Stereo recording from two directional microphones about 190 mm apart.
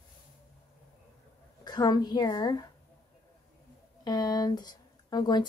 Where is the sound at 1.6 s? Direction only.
20° left (ahead or behind).